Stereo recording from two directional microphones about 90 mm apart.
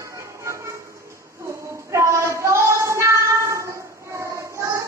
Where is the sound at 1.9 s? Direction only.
35° right (ahead or behind).